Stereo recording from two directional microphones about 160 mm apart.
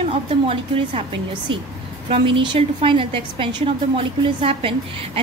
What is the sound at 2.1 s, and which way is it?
A woman's voice, 30° right (ahead or behind).